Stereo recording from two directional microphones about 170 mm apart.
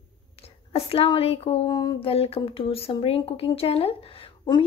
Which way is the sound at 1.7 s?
25° left (ahead or behind).